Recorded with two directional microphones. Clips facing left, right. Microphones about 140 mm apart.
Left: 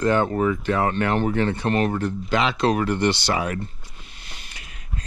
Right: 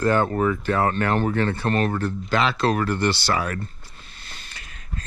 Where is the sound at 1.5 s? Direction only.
20° left (ahead or behind).